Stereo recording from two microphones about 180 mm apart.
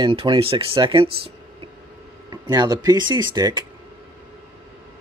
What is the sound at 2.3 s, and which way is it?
Speech, 20° right (ahead or behind).